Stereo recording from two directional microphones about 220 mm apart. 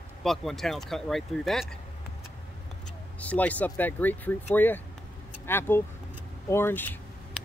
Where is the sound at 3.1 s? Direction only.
5° left (ahead or behind).